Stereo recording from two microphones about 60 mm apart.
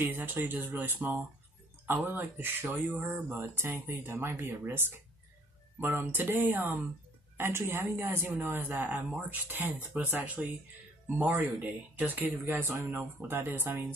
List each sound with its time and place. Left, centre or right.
0.0 s speech: right